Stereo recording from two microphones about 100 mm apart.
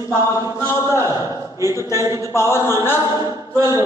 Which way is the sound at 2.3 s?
25° left (ahead or behind).